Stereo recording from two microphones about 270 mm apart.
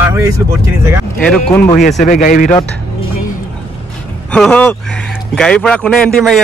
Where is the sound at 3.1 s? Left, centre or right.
Left.